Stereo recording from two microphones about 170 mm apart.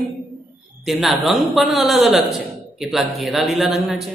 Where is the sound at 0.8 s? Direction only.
Centre (ahead or behind).